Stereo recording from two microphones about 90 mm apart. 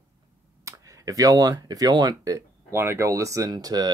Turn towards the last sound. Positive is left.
turn(degrees=-45)  # may be behind; listen again after turning